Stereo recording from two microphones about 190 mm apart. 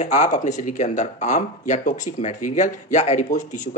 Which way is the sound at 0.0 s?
35° left (ahead or behind).